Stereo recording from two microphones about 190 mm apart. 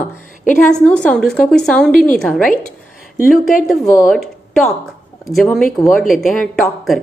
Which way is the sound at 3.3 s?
45° left (ahead or behind).